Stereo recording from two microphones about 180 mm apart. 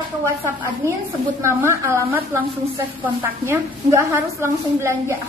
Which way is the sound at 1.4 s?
15° right (ahead or behind).